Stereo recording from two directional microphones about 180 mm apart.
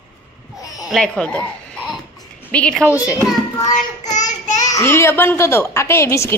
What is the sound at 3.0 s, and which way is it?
Speech, 20° left (ahead or behind).